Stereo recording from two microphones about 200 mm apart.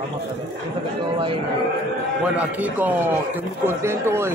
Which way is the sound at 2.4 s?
10° right (ahead or behind).